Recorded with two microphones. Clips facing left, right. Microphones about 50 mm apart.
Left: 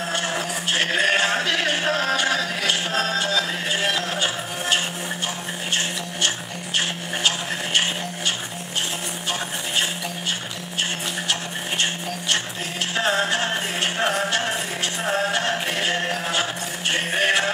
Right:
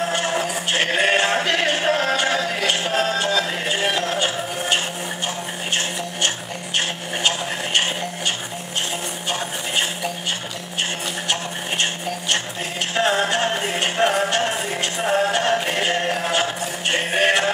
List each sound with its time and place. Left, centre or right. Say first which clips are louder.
0.1 s music: right 3 dB; centre
3.6 s a sound: right 2 dB; centre
12.9 s music: right 2 dB; centre